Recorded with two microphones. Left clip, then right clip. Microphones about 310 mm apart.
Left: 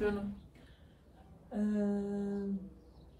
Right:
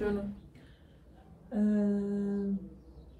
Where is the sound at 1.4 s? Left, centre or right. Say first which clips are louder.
Right 4 dB; left.